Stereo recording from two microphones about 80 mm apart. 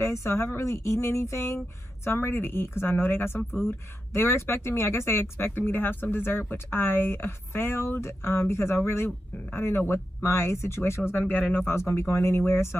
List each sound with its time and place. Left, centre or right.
0.0 s a woman's voice: left